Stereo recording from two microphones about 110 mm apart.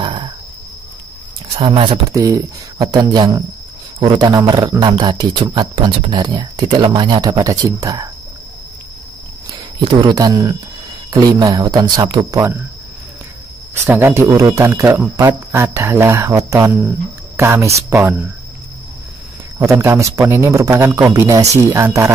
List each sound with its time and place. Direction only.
0.0 s wild animals: 50° right (ahead or behind)
1.5 s speech: 55° right (ahead or behind)
2.0 s speech: 30° right (ahead or behind)
9.5 s speech: 35° right (ahead or behind)
13.8 s a man's voice: 20° right (ahead or behind)
19.6 s a man's voice: 25° right (ahead or behind)